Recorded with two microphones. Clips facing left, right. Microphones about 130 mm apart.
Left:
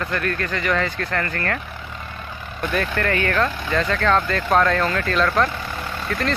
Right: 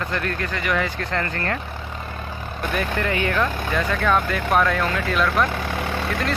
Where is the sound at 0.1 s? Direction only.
15° right (ahead or behind).